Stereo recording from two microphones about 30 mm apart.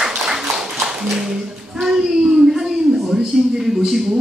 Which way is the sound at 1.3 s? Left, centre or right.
Right.